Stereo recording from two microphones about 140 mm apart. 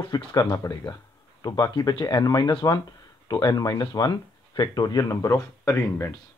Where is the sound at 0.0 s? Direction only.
30° left (ahead or behind).